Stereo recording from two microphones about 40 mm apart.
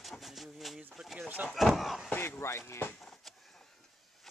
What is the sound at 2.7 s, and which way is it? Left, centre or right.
Speech, left.